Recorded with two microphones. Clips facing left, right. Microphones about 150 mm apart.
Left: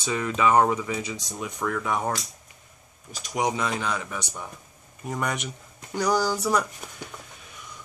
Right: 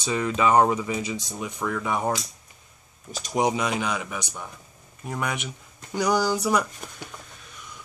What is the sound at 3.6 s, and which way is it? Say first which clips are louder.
Speech: right 1 dB; 10° right (ahead or behind).